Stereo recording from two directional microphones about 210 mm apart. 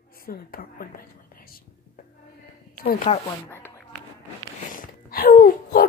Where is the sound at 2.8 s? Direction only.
45° left (ahead or behind).